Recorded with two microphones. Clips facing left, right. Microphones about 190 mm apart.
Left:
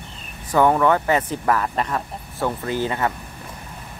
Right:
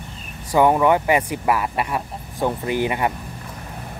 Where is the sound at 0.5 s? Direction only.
15° right (ahead or behind).